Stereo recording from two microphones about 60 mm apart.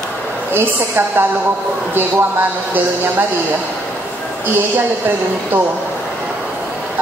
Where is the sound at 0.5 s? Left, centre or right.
Right.